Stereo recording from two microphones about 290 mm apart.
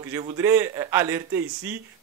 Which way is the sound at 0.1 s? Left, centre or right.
Centre.